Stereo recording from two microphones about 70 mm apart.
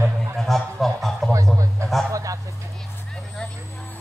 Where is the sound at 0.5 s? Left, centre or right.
Centre.